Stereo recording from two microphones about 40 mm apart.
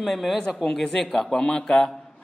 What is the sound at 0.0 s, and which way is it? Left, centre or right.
A man's voice, centre.